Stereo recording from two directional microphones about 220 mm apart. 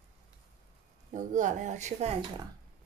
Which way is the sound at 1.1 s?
35° right (ahead or behind).